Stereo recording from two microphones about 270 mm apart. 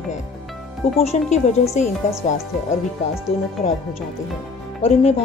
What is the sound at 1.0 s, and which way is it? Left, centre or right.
Speech, left.